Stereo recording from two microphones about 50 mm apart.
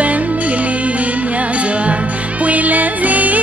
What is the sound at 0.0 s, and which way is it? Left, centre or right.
Music, right.